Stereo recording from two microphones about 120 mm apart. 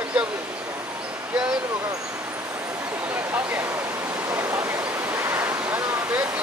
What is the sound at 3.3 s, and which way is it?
Speech, 20° right (ahead or behind).